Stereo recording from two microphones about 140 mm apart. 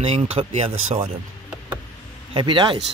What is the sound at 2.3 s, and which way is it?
Speech, 35° right (ahead or behind).